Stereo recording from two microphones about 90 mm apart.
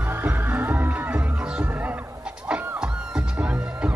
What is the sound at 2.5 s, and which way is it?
Music, 10° right (ahead or behind).